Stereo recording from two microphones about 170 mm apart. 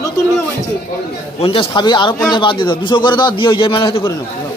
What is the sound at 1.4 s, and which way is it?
A man's voice, 30° left (ahead or behind).